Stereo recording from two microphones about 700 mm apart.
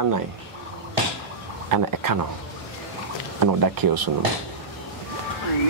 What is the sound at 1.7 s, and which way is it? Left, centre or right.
Speech, right.